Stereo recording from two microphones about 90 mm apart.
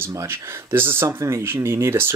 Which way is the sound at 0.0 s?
30° right (ahead or behind).